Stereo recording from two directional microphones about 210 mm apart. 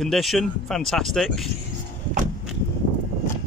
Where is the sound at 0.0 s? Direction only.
Centre (ahead or behind).